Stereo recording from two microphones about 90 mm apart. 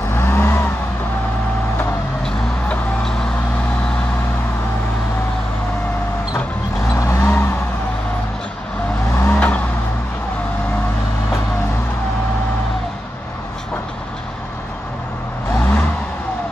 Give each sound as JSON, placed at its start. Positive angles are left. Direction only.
{"t": 0.1, "sound": "vehicle", "side_deg": 25}
{"t": 2.2, "sound": "a sound", "side_deg": 5}
{"t": 7.0, "sound": "vehicle", "side_deg": 30}
{"t": 9.1, "sound": "vehicle", "side_deg": 25}